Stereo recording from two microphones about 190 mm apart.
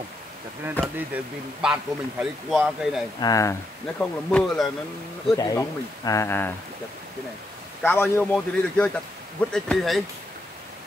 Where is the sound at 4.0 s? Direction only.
5° left (ahead or behind).